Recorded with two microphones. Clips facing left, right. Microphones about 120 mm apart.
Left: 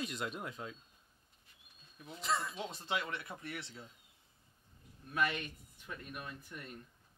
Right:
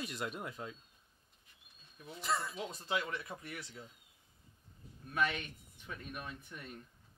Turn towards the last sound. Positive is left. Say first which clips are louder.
# even
turn(degrees=0)  # may be behind; listen again after turning